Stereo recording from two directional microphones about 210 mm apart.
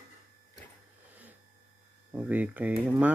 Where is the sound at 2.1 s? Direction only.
5° right (ahead or behind).